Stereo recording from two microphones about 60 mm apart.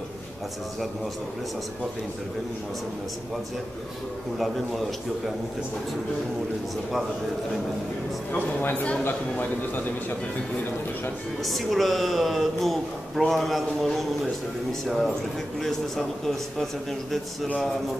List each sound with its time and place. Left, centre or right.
8.3 s a man's voice: left
11.4 s a woman's voice: centre